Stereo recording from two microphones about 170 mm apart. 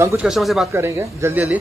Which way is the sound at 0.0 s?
15° right (ahead or behind).